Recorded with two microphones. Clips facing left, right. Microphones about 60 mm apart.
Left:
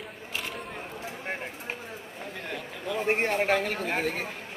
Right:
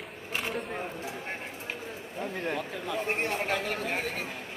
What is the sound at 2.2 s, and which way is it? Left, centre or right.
Speech, right.